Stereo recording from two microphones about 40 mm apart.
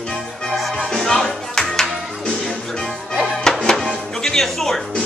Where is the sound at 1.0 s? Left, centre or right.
Centre.